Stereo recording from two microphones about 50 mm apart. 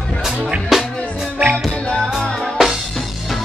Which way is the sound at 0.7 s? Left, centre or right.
Centre.